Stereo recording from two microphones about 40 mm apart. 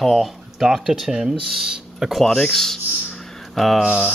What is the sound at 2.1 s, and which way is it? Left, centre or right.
Speech, centre.